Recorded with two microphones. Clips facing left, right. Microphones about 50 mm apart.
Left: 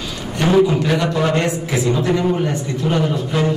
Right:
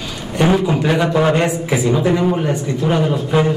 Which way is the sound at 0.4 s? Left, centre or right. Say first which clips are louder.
Left 1 dB; centre.